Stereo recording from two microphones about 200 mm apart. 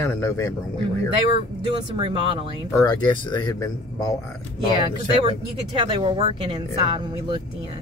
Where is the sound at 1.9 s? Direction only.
25° right (ahead or behind).